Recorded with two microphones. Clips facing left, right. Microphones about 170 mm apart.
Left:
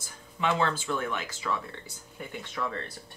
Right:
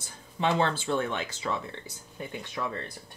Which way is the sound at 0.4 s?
30° right (ahead or behind).